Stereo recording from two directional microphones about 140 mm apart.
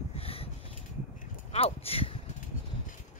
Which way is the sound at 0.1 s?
45° left (ahead or behind).